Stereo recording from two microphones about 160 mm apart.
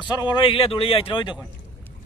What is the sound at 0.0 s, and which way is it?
A man's voice, 30° left (ahead or behind).